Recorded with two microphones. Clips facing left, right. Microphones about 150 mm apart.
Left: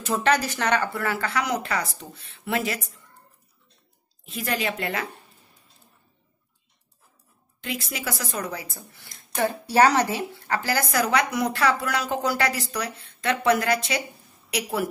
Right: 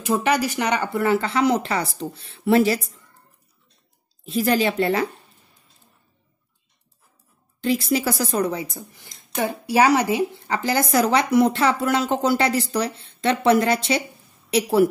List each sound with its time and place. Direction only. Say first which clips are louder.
0.0 s speech: right 2 dB; 10° right (ahead or behind); by 2.8 s 30° right (ahead or behind)
4.2 s speech: right 8 dB; 35° right (ahead or behind)
7.6 s speech: right 10 dB; 30° right (ahead or behind)
8.6 s speech: right 5 dB; 20° right (ahead or behind)